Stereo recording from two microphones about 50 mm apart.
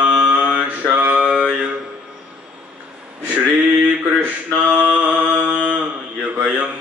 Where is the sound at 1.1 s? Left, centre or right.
Right.